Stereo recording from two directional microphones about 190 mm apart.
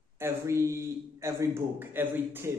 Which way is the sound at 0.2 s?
15° right (ahead or behind).